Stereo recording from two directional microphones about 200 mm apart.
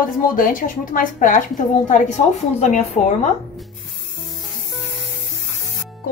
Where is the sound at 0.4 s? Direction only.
45° left (ahead or behind).